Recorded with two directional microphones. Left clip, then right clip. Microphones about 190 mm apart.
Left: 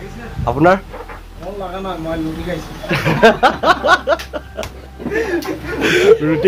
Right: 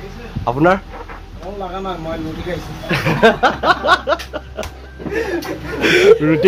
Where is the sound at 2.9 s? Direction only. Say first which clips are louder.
Left 1 dB; 10° right (ahead or behind).